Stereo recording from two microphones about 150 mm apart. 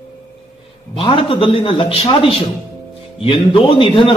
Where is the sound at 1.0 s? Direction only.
35° left (ahead or behind).